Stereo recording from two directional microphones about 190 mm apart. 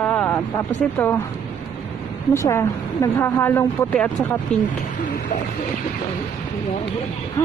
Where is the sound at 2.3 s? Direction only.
15° left (ahead or behind).